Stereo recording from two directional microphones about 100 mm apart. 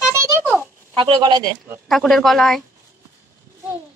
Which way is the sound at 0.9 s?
50° right (ahead or behind).